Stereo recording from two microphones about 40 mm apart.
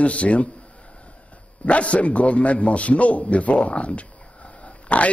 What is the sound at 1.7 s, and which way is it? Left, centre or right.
A man's voice, left.